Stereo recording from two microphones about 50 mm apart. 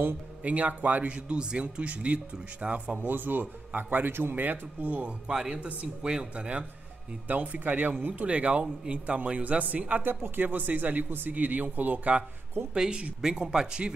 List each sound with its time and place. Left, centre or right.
0.4 s a man's voice: right
3.0 s speech: right
5.3 s a man's voice: centre
7.2 s a man's voice: right
10.0 s speech: right
12.7 s speech: centre